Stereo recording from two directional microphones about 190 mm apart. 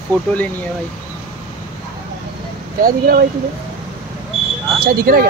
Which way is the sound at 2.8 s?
50° right (ahead or behind).